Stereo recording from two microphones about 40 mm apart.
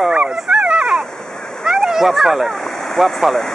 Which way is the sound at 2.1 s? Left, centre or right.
Centre.